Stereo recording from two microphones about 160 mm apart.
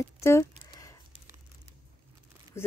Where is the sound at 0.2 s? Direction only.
15° left (ahead or behind).